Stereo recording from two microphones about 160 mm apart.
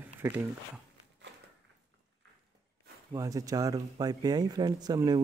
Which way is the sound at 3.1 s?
20° right (ahead or behind).